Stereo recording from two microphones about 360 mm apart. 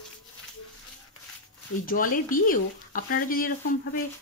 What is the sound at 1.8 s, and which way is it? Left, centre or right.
Speech, left.